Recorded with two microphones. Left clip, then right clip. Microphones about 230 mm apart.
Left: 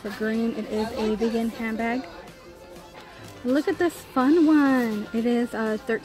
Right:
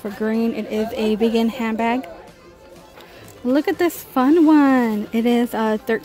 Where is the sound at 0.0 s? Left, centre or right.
Centre.